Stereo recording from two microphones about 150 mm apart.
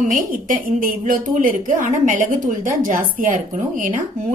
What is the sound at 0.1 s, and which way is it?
A woman's voice, 65° right (ahead or behind).